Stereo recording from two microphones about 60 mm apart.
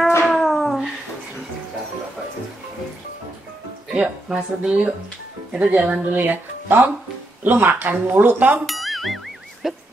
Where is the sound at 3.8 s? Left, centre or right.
Centre.